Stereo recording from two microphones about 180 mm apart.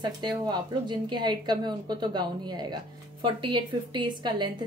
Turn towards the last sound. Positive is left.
turn(degrees=-25)  # may be behind; listen again after turning